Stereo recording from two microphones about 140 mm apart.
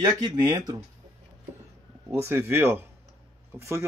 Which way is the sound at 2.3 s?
15° right (ahead or behind).